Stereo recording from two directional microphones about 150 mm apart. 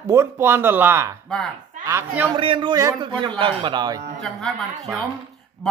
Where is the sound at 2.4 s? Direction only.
35° right (ahead or behind).